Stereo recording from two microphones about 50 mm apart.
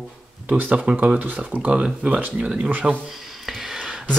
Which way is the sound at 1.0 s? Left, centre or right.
Centre.